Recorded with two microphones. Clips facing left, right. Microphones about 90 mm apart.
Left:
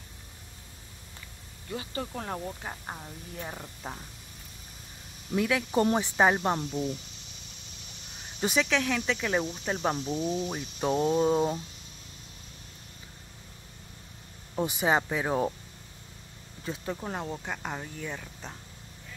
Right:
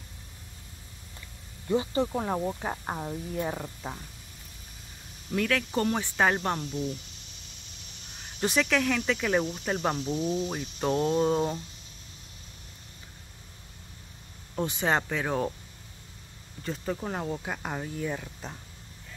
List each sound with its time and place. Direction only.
1.7 s speech: 25° right (ahead or behind)
3.3 s speech: 10° right (ahead or behind)
5.3 s speech: 15° left (ahead or behind)
8.4 s speech: centre (ahead or behind)
14.5 s speech: 10° left (ahead or behind)
16.6 s speech: 5° left (ahead or behind)